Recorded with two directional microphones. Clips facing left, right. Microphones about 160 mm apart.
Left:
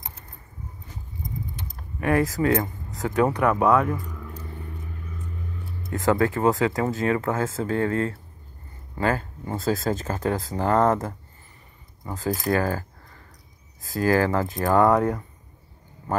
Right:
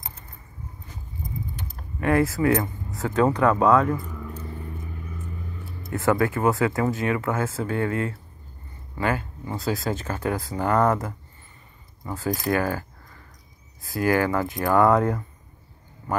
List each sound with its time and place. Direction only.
2.0 s speech: 20° left (ahead or behind)
4.0 s vehicle: 5° right (ahead or behind)
6.1 s speech: 30° left (ahead or behind)
12.0 s speech: 20° left (ahead or behind)
12.4 s keys jangling: 35° left (ahead or behind)
13.9 s speech: 35° left (ahead or behind)